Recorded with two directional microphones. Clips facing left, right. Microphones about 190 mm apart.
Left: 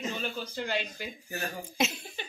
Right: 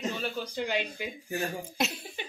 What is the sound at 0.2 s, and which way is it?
A woman's voice, 10° right (ahead or behind).